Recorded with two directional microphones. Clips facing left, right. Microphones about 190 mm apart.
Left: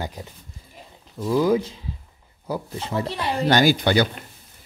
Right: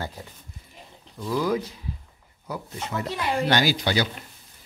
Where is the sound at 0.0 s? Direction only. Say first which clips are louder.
Left 3 dB; 20° left (ahead or behind); by 4.2 s 55° left (ahead or behind).